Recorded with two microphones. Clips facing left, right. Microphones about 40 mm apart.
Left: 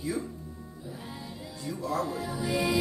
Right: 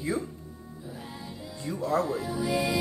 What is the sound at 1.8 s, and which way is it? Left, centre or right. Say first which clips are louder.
Speech: right 4 dB; right.